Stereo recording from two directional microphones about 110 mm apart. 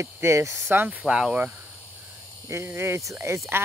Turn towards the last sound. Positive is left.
turn(degrees=-25)  # may be behind; listen again after turning